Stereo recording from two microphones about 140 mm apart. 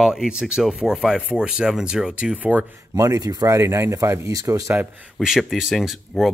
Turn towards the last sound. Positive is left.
turn(degrees=0)  # may be behind; listen again after turning